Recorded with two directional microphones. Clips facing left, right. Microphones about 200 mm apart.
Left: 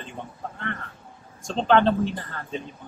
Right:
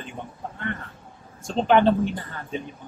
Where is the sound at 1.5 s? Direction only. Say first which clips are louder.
Right 1 dB; 15° right (ahead or behind).